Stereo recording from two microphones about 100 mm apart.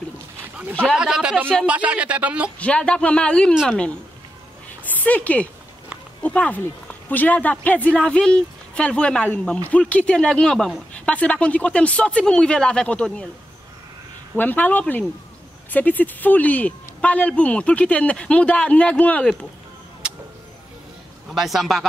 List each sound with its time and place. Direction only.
0.9 s speech: 5° right (ahead or behind)
2.6 s a man's voice: 10° left (ahead or behind)
14.3 s a man's voice: 15° left (ahead or behind)
20.0 s vehicle: 10° right (ahead or behind)
21.3 s a man's voice: centre (ahead or behind)